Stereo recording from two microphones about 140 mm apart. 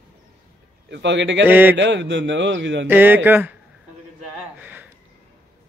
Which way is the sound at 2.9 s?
15° right (ahead or behind).